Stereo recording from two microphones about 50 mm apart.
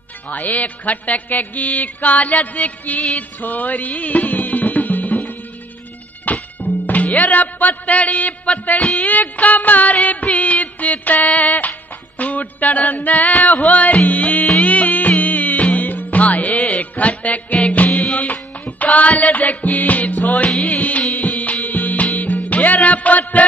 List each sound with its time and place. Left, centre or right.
0.3 s music: left
20.7 s music of bollywood: left
21.2 s music: left
21.6 s music: left